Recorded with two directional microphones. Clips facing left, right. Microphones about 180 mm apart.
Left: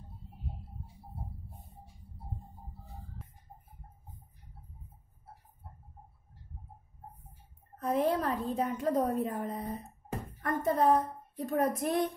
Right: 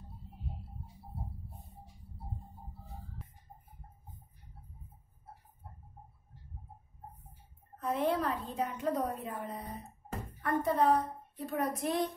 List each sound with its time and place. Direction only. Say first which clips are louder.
7.8 s a woman's voice: left 2 dB; 40° left (ahead or behind)